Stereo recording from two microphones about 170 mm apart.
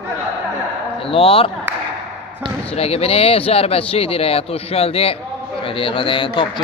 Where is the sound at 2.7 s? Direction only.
35° left (ahead or behind).